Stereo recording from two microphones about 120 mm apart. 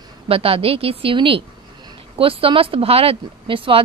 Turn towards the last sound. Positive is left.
turn(degrees=-45)  # may be behind; listen again after turning